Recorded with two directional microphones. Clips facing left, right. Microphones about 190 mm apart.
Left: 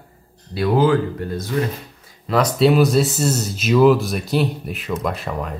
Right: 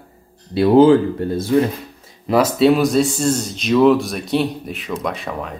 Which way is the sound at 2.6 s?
Centre (ahead or behind).